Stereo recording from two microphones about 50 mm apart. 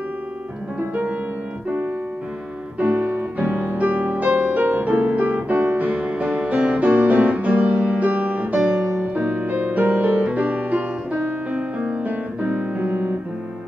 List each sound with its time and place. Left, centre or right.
0.7 s music: right
2.8 s music: right